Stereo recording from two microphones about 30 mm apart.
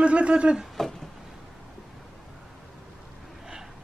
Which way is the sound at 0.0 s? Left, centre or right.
Right.